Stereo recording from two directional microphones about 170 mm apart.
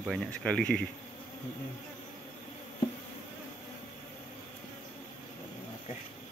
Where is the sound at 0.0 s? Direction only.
Centre (ahead or behind).